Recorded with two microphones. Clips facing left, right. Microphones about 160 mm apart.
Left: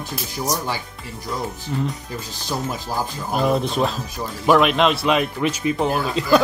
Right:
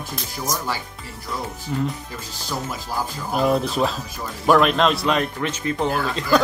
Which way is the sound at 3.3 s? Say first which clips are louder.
Even; centre (ahead or behind).